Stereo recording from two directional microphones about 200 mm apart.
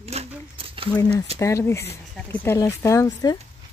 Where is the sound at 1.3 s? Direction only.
15° left (ahead or behind).